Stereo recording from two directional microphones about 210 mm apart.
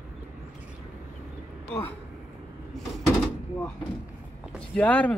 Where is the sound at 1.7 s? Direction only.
10° left (ahead or behind).